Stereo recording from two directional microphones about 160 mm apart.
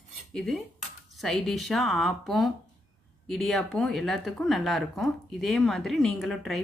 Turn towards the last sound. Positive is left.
turn(degrees=0)  # may be behind; listen again after turning